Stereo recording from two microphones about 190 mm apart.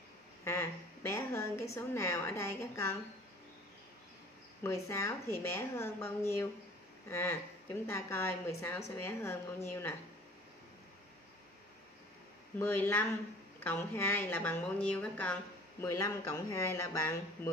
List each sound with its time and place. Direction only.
0.5 s a woman's voice: 15° left (ahead or behind)
4.6 s a woman's voice: 15° left (ahead or behind)
12.5 s a woman's voice: 10° left (ahead or behind)